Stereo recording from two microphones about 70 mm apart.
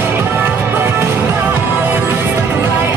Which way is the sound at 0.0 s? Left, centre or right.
Right.